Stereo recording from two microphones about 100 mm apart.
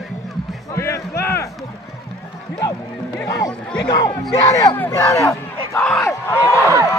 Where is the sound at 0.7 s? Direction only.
30° left (ahead or behind).